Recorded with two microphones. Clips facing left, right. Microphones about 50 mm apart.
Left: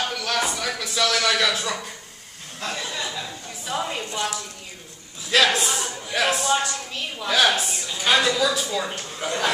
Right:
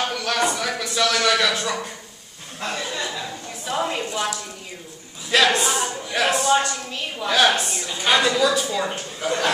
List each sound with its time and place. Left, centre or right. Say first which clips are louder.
0.1 s a man's voice: right 3 dB; centre
4.0 s a woman's voice: right 2 dB; centre
5.3 s a woman's voice: right 2 dB; centre